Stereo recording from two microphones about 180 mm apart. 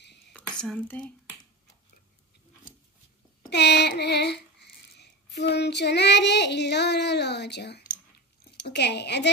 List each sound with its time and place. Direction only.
0.6 s speech: 5° left (ahead or behind)
3.4 s a sound: 70° left (ahead or behind)
8.6 s a woman's voice: 70° left (ahead or behind)